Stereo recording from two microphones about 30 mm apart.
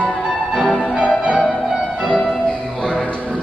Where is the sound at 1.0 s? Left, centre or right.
Right.